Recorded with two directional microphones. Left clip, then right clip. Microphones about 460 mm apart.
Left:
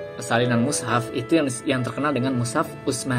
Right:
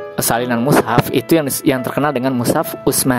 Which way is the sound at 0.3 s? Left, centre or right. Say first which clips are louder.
Right 6 dB; right.